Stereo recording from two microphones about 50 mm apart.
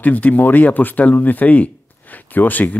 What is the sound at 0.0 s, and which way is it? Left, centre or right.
Speech, left.